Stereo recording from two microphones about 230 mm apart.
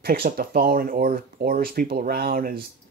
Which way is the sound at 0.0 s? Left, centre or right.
Right.